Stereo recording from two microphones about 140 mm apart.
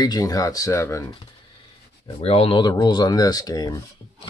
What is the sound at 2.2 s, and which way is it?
Speech, 45° left (ahead or behind).